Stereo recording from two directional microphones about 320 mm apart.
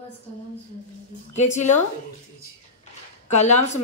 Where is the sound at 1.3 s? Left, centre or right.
Left.